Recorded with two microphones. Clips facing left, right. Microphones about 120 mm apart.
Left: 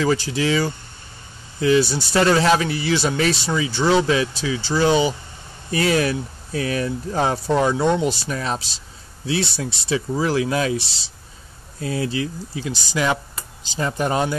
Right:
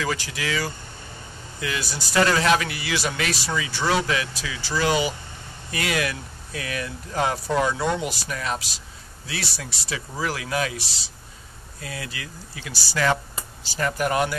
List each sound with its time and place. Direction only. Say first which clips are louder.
0.0 s speech: left 8 dB; 30° left (ahead or behind)